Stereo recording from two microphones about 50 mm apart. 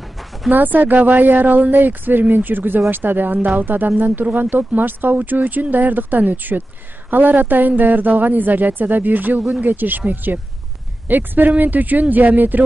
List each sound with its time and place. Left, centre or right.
0.5 s speech: right